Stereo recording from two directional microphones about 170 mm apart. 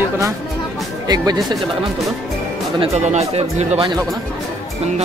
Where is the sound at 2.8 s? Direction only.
40° right (ahead or behind).